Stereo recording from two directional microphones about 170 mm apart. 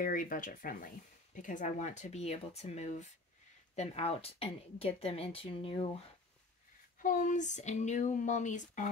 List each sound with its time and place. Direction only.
0.0 s speech: 55° left (ahead or behind); by 5.9 s 35° left (ahead or behind)
7.0 s speech: 50° left (ahead or behind)